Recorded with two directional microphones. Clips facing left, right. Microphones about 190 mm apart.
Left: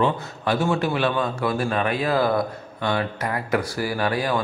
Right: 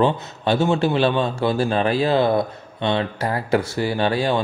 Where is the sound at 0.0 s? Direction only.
25° right (ahead or behind).